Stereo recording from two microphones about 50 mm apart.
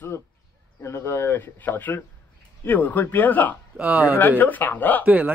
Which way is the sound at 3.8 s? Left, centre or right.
Right.